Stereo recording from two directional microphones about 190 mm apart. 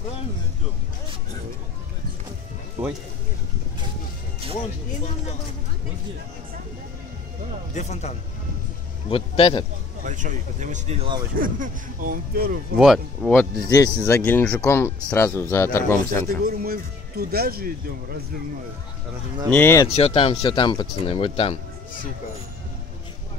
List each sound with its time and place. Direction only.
2.8 s speech: 10° right (ahead or behind)
7.7 s a man's voice: 35° left (ahead or behind)
10.0 s speech: 40° right (ahead or behind)
11.3 s speech: 45° right (ahead or behind)
12.7 s speech: centre (ahead or behind)
13.7 s speech: 20° left (ahead or behind)
16.3 s speech: 50° right (ahead or behind)
19.5 s speech: 15° left (ahead or behind)
19.9 s speech: 35° left (ahead or behind)